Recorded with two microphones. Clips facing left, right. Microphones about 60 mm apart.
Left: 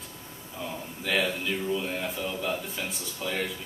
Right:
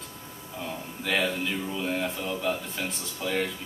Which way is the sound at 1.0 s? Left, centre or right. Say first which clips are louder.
Right 1 dB; centre.